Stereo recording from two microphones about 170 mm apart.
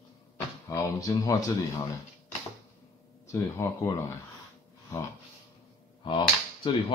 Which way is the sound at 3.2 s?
15° left (ahead or behind).